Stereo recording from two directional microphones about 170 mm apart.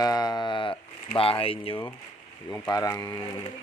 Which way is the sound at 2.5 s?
20° left (ahead or behind).